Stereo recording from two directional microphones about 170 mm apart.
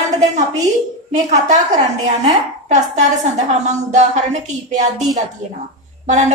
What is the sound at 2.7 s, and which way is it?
A woman's voice, 45° right (ahead or behind).